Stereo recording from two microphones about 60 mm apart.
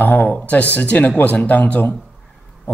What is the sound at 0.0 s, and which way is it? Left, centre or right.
Speech, left.